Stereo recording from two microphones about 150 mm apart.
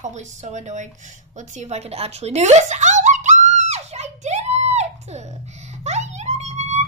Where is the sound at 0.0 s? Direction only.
50° right (ahead or behind).